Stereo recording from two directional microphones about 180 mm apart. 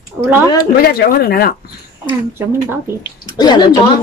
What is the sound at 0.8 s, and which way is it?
Speech, 55° left (ahead or behind).